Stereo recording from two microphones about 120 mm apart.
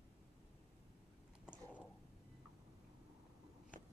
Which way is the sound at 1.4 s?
10° right (ahead or behind).